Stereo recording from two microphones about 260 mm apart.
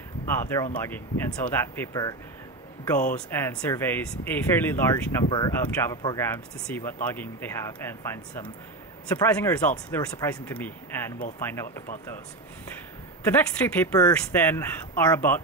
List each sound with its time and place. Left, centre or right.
0.7 s speech: centre
3.3 s speech: centre
13.2 s speech: centre